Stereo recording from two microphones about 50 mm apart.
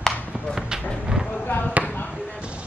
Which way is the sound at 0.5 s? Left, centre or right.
Centre.